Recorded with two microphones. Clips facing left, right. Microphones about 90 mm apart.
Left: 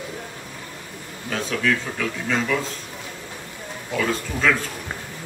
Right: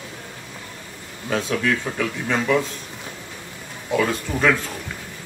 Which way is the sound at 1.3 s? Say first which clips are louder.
Right 1 dB; 15° right (ahead or behind).